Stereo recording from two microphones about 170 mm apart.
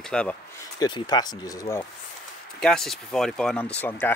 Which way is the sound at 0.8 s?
25° left (ahead or behind).